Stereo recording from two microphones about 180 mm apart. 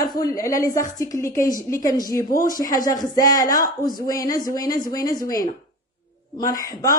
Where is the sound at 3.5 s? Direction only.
50° left (ahead or behind).